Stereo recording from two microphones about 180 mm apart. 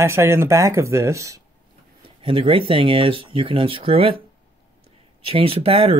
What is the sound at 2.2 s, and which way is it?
Speech, 30° right (ahead or behind).